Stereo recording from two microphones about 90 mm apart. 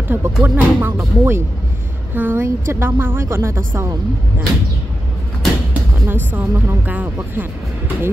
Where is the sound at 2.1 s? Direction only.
20° right (ahead or behind).